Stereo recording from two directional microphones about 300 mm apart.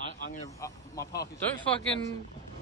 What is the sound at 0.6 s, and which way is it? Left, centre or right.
Speech, centre.